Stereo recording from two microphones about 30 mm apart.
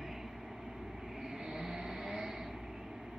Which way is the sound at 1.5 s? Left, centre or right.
Centre.